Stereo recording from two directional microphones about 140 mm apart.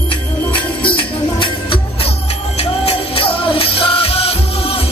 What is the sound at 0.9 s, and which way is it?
Music, 40° left (ahead or behind).